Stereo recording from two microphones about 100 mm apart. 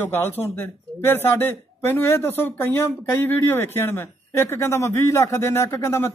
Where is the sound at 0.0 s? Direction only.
20° left (ahead or behind).